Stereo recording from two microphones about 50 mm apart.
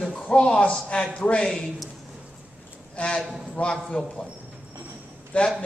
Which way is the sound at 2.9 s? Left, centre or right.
Centre.